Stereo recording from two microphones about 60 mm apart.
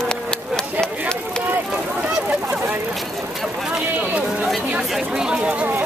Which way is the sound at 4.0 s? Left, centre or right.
Right.